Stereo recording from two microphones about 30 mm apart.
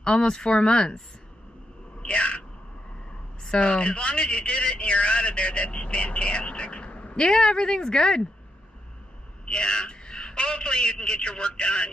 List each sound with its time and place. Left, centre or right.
0.0 s a man's voice: left
2.0 s a sound: left
3.4 s a man's voice: left
7.2 s speech: left
9.5 s a man's voice: left